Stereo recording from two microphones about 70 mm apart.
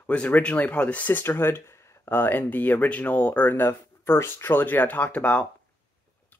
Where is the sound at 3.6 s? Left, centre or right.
Left.